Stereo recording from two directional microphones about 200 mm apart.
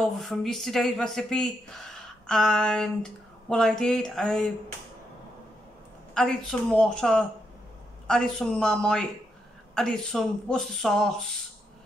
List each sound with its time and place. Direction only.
0.0 s speech: centre (ahead or behind)
6.1 s speech: 5° left (ahead or behind)